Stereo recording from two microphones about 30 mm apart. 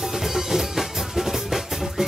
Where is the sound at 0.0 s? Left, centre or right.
Centre.